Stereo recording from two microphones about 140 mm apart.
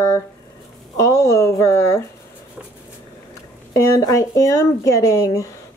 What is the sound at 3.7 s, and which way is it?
Speech, 25° left (ahead or behind).